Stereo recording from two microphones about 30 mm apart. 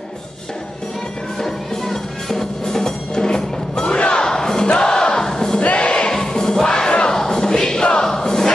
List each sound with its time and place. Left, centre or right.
1.4 s music: centre
4.6 s battle cry: left
5.6 s a sound: left
5.9 s music: left
6.1 s music: centre
7.8 s crowd: left
8.1 s crowd: centre